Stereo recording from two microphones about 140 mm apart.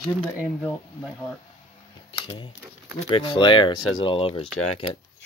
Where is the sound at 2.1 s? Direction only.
35° left (ahead or behind).